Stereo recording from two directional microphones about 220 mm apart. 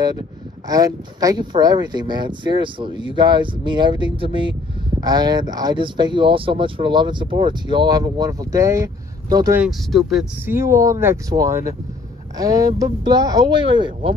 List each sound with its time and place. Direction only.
0.7 s speech: 15° right (ahead or behind)
9.6 s speech: centre (ahead or behind); by 14.1 s 20° right (ahead or behind)